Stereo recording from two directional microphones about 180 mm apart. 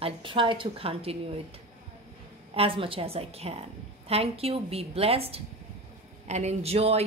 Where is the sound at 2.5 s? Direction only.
30° right (ahead or behind).